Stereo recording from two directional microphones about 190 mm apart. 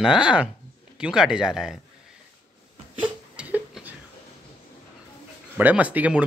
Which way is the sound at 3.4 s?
5° right (ahead or behind).